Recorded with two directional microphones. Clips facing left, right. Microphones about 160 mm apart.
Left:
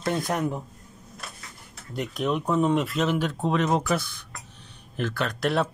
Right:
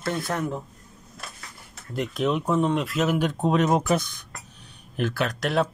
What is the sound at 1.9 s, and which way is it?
Speech, centre (ahead or behind).